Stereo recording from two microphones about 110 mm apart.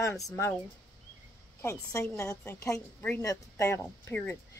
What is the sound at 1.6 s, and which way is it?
Speech, 25° left (ahead or behind).